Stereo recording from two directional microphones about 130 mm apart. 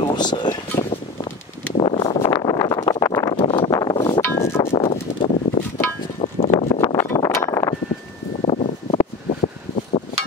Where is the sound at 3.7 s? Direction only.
30° left (ahead or behind).